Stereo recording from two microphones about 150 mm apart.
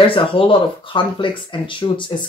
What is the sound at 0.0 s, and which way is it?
Speech, 35° left (ahead or behind).